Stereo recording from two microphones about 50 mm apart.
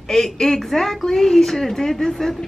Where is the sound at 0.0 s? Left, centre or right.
Centre.